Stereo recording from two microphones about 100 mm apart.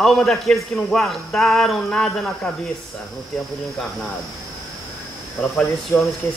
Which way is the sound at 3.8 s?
5° left (ahead or behind).